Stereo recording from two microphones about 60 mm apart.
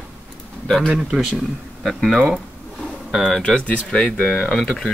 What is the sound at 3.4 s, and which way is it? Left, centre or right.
Speech, centre.